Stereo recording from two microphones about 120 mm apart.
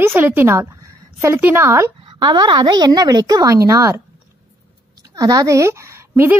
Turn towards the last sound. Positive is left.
turn(degrees=-20)  # may be behind; listen again after turning